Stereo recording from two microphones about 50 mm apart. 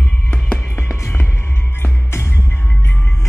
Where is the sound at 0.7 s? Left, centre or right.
Left.